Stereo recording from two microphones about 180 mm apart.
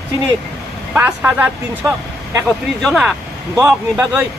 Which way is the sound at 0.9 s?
10° right (ahead or behind).